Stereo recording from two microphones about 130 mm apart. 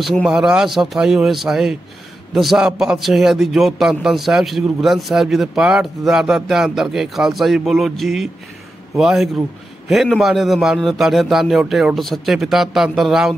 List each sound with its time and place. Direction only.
0.0 s a man's voice: centre (ahead or behind)